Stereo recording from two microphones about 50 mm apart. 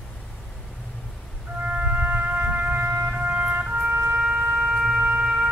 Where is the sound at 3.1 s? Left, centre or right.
Right.